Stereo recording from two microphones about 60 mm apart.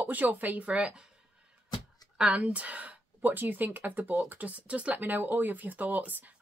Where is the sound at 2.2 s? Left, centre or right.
Right.